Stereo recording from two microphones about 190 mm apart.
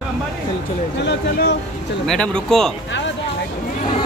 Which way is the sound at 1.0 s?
65° left (ahead or behind).